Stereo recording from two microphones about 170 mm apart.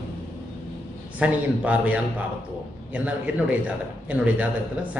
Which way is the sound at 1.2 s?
10° right (ahead or behind).